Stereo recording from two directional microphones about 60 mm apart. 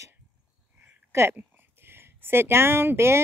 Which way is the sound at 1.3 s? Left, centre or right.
Right.